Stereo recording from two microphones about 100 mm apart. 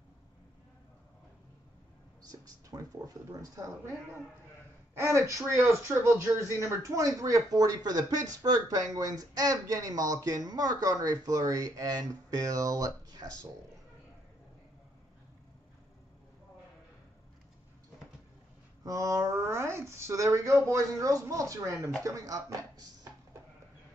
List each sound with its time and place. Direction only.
2.2 s speech: 40° right (ahead or behind)
5.5 s speech: 30° right (ahead or behind)
18.9 s speech: 30° right (ahead or behind)